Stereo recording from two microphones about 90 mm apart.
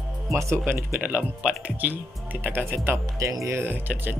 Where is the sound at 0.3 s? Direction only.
30° right (ahead or behind).